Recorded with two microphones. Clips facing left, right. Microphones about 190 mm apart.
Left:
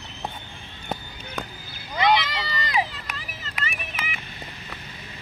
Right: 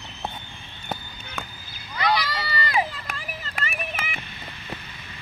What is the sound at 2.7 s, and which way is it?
Run, 50° right (ahead or behind).